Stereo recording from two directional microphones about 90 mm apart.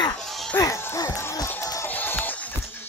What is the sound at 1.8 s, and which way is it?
Music, 20° left (ahead or behind).